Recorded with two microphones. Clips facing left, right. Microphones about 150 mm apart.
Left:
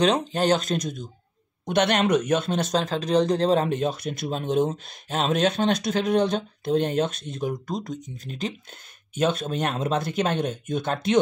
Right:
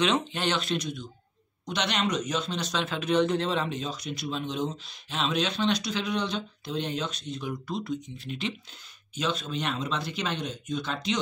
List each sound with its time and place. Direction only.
0.0 s speech: 40° left (ahead or behind)
9.1 s speech: 50° left (ahead or behind)